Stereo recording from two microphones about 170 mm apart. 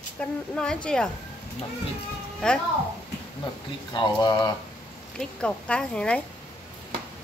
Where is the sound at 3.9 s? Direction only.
25° left (ahead or behind).